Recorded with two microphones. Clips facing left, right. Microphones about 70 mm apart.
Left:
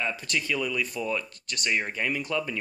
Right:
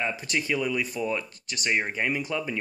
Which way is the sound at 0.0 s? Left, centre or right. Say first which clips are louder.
Right 1 dB; centre.